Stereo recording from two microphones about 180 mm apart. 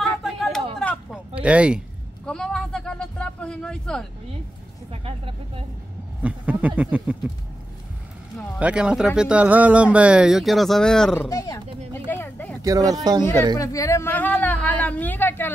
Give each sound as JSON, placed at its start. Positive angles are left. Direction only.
{"t": 0.0, "sound": "a sound", "side_deg": 0}
{"t": 6.2, "sound": "speech", "side_deg": -10}
{"t": 8.5, "sound": "speech", "side_deg": -5}
{"t": 11.1, "sound": "a sound", "side_deg": 20}
{"t": 12.6, "sound": "speech", "side_deg": -20}
{"t": 13.6, "sound": "speech", "side_deg": 20}